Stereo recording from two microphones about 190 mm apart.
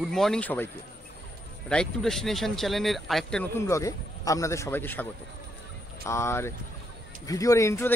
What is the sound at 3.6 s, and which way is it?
Speech, 15° left (ahead or behind).